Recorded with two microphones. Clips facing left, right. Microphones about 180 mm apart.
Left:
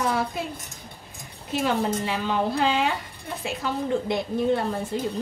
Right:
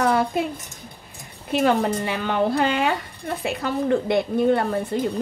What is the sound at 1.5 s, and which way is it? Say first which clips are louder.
A woman's voice: right 4 dB; 60° right (ahead or behind).